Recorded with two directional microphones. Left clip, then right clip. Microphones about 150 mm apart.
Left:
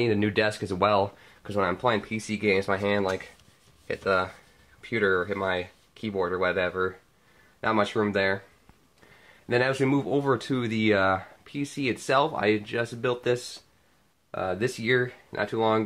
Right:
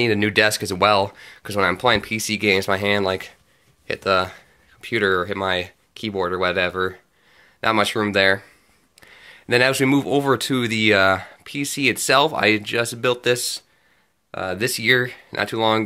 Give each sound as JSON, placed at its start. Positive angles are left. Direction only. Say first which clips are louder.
{"t": 0.0, "sound": "speech", "louder": "right 7 dB", "side_deg": -15}
{"t": 9.5, "sound": "speech", "louder": "right 7 dB", "side_deg": -20}